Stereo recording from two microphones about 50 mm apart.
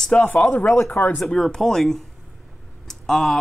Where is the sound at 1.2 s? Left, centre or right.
Centre.